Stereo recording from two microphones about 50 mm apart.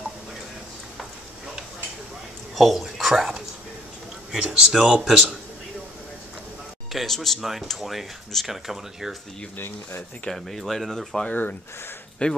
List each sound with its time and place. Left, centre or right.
2.5 s speech: centre
6.9 s speech: centre
10.3 s speech: centre
11.2 s speech: left
12.2 s speech: left